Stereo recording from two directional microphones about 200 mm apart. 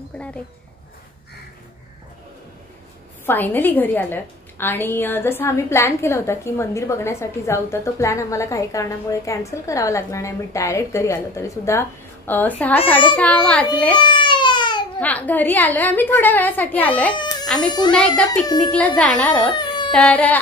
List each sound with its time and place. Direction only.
0.1 s a woman's voice: 5° left (ahead or behind)
3.3 s a woman's voice: 10° left (ahead or behind)
13.9 s baby cry: 25° left (ahead or behind)
15.0 s a woman's voice: 10° left (ahead or behind)
17.1 s baby cry: 25° left (ahead or behind)
17.5 s speech: 5° left (ahead or behind)
18.4 s a child's voice: 20° left (ahead or behind)
18.7 s speech: 5° left (ahead or behind)
19.5 s a sound: 25° left (ahead or behind)
19.9 s speech: 5° left (ahead or behind)